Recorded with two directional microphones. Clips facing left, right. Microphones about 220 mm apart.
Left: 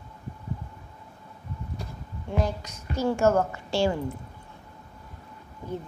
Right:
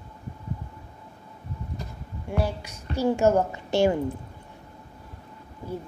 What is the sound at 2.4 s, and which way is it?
A woman's voice, 10° right (ahead or behind).